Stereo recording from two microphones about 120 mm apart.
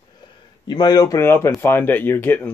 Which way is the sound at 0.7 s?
35° left (ahead or behind).